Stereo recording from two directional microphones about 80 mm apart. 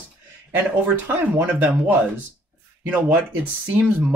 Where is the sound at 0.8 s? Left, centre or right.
Centre.